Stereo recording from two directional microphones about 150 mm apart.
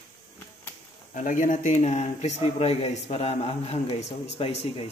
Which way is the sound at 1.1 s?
60° left (ahead or behind).